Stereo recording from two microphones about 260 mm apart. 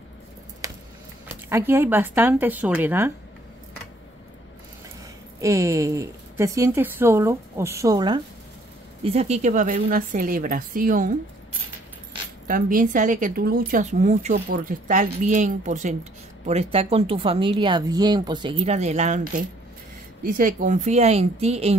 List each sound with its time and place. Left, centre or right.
1.5 s a woman's voice: centre
5.4 s a woman's voice: centre; by 11.1 s right
12.4 s a woman's voice: right